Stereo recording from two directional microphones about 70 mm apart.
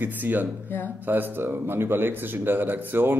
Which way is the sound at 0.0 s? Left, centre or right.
Right.